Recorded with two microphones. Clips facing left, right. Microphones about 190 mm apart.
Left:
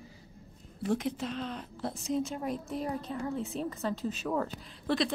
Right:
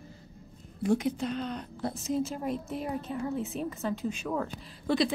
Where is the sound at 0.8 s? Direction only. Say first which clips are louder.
Right 4 dB; centre (ahead or behind).